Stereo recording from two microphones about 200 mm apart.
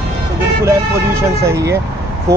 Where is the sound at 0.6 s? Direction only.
15° right (ahead or behind).